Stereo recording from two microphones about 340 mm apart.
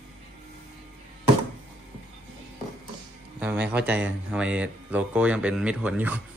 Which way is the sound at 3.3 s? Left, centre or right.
Centre.